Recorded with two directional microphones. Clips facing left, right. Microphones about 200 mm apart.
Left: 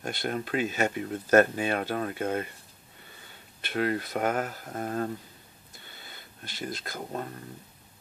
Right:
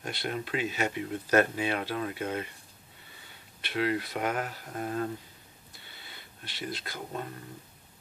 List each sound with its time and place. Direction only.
0.0 s speech: 45° left (ahead or behind)
3.6 s speech: 45° left (ahead or behind)
5.9 s a sound: 45° left (ahead or behind)